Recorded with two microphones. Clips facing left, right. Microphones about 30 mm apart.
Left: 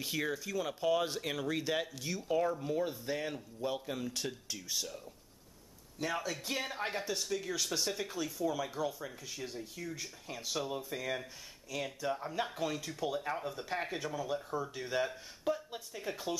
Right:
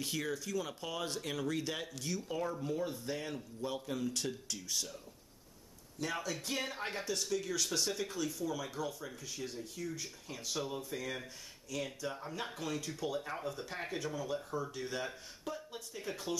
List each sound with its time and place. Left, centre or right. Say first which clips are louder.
0.2 s speech: left 4 dB; centre